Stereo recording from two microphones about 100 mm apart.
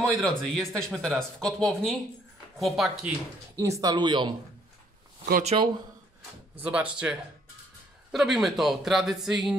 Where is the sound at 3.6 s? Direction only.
35° right (ahead or behind); by 4.3 s 50° right (ahead or behind).